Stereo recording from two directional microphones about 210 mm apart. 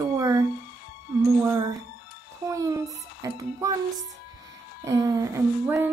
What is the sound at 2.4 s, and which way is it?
Speech, 15° right (ahead or behind).